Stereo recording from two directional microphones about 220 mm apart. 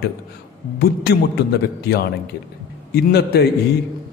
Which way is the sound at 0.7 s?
45° left (ahead or behind).